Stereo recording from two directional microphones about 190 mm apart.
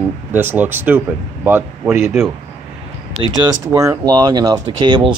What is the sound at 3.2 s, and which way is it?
Speech, 90° right.